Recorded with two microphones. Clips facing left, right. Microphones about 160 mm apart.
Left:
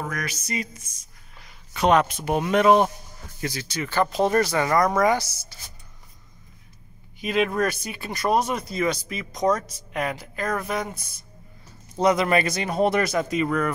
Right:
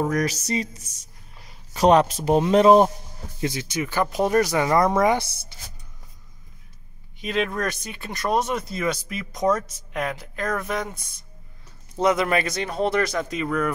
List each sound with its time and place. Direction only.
0.1 s a sound: 35° right (ahead or behind)
1.4 s speech: 35° right (ahead or behind)
3.3 s speech: 20° right (ahead or behind)
4.7 s speech: 25° right (ahead or behind)
7.2 s speech: 5° left (ahead or behind)
12.0 s speech: centre (ahead or behind)
12.6 s speech: 15° left (ahead or behind)